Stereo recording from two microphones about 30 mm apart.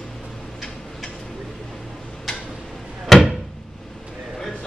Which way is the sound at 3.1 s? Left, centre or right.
Centre.